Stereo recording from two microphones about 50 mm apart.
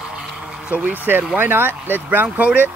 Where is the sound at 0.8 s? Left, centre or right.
Right.